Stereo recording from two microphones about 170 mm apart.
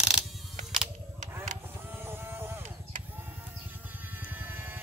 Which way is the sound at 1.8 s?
15° right (ahead or behind).